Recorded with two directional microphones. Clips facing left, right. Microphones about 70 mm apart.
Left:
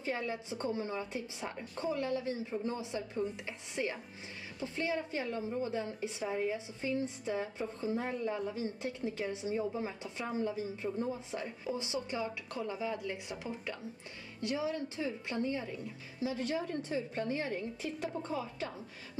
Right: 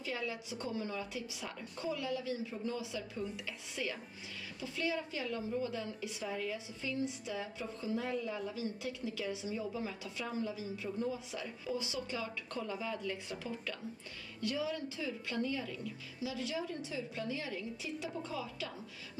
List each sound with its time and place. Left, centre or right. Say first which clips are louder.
0.0 s a woman's voice: left 3 dB; left
12.4 s a woman's voice: left 2 dB; centre; by 18.7 s left